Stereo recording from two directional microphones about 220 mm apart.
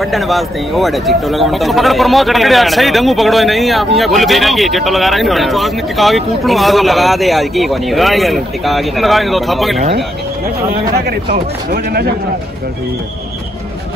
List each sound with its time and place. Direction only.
0.0 s speech: centre (ahead or behind)
11.0 s a man's voice: 45° right (ahead or behind)